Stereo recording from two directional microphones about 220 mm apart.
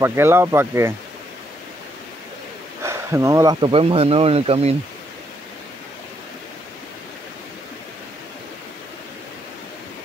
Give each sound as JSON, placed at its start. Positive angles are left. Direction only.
{"t": 0.0, "sound": "speech", "side_deg": -10}
{"t": 2.8, "sound": "speech", "side_deg": -10}